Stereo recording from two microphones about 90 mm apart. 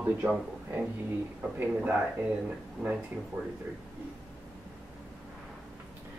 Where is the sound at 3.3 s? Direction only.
25° right (ahead or behind).